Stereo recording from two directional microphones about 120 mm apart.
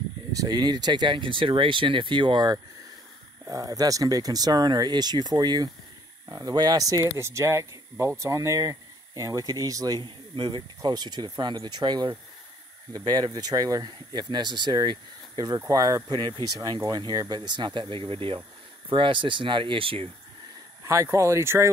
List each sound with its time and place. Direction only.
0.3 s speech: 30° right (ahead or behind); by 20.1 s 50° right (ahead or behind)
20.8 s speech: 25° right (ahead or behind)